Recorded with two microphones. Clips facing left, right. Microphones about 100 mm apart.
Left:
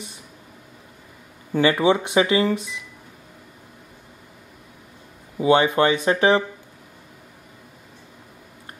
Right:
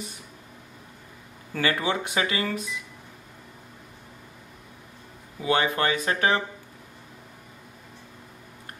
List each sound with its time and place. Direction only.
1.5 s speech: 25° left (ahead or behind)
5.4 s speech: 25° left (ahead or behind)